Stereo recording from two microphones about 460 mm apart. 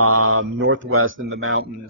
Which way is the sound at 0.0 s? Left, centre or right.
Right.